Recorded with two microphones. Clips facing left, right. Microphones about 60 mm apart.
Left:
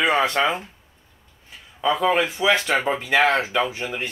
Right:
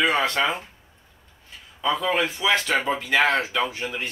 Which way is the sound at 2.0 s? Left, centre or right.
Centre.